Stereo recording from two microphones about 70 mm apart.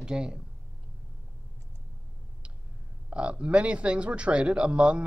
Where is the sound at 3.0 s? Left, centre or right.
Centre.